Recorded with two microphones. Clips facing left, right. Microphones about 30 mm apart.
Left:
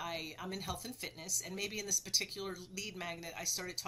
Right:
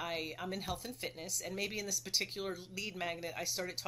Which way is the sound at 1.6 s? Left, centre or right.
Right.